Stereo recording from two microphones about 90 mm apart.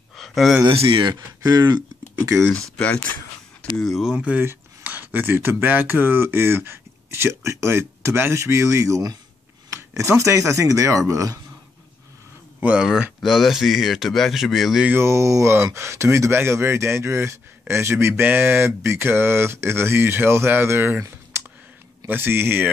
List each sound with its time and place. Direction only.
0.1 s a sound: centre (ahead or behind)
0.7 s speech: 85° right
1.1 s speech: 45° right (ahead or behind)
2.4 s speech: 10° left (ahead or behind)
3.7 s a man's voice: centre (ahead or behind)
4.2 s speech: 15° right (ahead or behind); by 11.3 s 40° right (ahead or behind)
12.5 s a sound: 15° right (ahead or behind)
13.2 s a man's voice: centre (ahead or behind)
14.9 s speech: 30° right (ahead or behind)
21.3 s a sound: 30° right (ahead or behind)
22.0 s speech: 25° right (ahead or behind)